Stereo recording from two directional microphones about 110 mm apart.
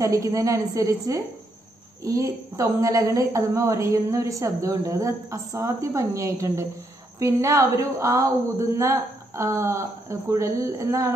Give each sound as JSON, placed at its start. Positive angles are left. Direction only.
{"t": 0.0, "sound": "a woman's voice", "side_deg": -30}